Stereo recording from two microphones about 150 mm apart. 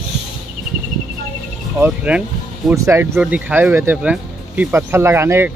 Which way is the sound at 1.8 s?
5° right (ahead or behind).